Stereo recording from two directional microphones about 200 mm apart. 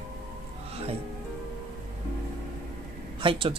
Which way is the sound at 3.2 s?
25° right (ahead or behind).